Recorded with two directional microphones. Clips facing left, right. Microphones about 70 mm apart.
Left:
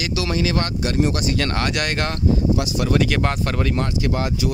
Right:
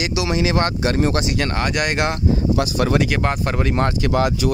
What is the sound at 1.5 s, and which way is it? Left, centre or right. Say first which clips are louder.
Speech: right 2 dB; centre.